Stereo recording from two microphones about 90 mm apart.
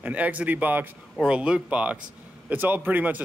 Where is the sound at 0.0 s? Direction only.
15° right (ahead or behind).